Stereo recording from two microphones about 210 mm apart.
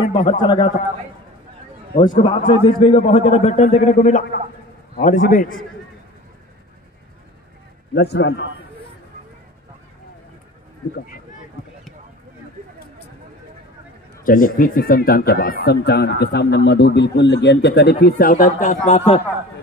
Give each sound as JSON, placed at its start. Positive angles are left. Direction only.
{"t": 0.1, "sound": "a man's voice", "side_deg": 20}
{"t": 2.0, "sound": "a man's voice", "side_deg": 25}
{"t": 7.9, "sound": "speech", "side_deg": 50}
{"t": 14.2, "sound": "speech", "side_deg": 40}